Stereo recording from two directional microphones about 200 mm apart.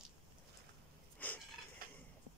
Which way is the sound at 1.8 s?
45° right (ahead or behind).